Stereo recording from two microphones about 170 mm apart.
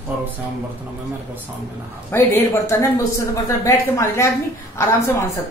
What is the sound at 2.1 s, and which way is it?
Speech, 15° left (ahead or behind).